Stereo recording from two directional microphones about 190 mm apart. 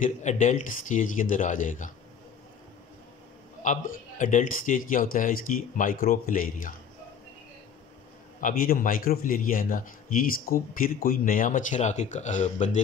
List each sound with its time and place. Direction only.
0.0 s a man's voice: 40° left (ahead or behind)
3.6 s a man's voice: 40° left (ahead or behind)
8.4 s a man's voice: 45° left (ahead or behind)